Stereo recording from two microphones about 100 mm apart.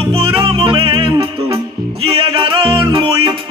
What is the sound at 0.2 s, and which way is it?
Music, 65° right (ahead or behind).